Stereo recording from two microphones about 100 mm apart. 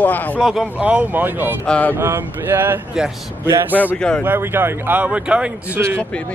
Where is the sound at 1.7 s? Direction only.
15° left (ahead or behind).